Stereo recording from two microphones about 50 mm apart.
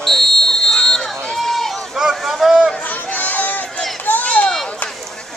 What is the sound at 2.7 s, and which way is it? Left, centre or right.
Chatter, left.